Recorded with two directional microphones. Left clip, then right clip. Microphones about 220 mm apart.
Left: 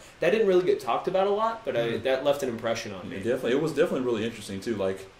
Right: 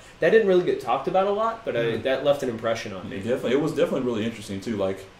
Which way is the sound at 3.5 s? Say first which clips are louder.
Right 2 dB; 45° left (ahead or behind).